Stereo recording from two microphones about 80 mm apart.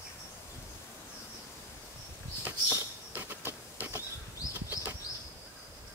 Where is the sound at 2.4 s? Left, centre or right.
Right.